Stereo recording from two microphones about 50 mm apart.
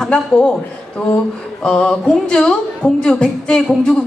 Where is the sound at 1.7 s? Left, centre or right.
Centre.